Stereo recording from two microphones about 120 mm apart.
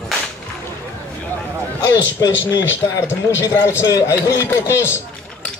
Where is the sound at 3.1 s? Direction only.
25° left (ahead or behind).